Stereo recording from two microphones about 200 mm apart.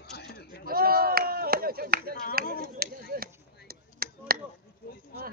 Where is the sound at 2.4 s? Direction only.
45° left (ahead or behind).